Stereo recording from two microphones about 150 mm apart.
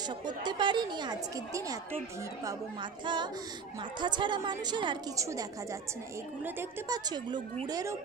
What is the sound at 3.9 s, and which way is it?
A woman's voice, 30° right (ahead or behind).